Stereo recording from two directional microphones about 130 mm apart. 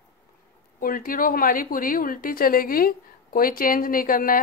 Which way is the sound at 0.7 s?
90° left.